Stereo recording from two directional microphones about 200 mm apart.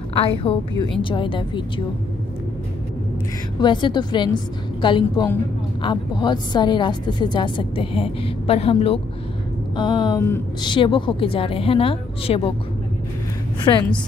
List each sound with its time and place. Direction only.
0.2 s a woman's voice: 25° left (ahead or behind)
3.6 s a woman's voice: 25° left (ahead or behind)
13.7 s a woman's voice: 20° left (ahead or behind)